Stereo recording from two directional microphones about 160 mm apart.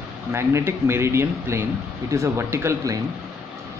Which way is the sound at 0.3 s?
15° right (ahead or behind).